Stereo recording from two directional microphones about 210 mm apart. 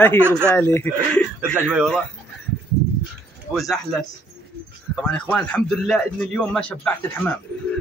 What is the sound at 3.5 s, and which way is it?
A man's voice, centre (ahead or behind).